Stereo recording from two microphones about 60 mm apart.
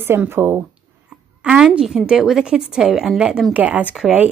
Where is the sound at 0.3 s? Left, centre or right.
Right.